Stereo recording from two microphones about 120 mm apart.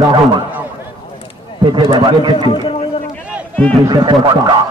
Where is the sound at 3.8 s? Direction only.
40° right (ahead or behind).